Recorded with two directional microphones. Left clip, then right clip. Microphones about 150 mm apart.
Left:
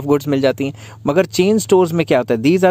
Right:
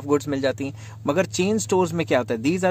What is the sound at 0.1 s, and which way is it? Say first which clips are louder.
Speech: left 7 dB; 55° left (ahead or behind).